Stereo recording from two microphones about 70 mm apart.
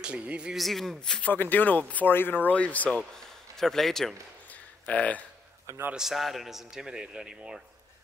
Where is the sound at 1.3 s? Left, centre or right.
Left.